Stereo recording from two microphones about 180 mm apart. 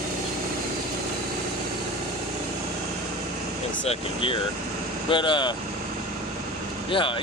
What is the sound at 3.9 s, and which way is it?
Speech, 30° left (ahead or behind).